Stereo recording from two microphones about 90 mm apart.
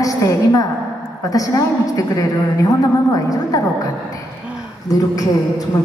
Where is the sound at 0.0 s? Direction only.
40° left (ahead or behind).